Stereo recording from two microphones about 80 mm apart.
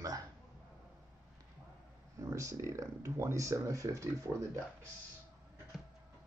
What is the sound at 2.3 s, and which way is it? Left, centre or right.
Speech, right.